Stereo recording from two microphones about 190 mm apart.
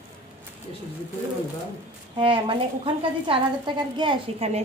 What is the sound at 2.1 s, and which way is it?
A woman's voice, 25° right (ahead or behind).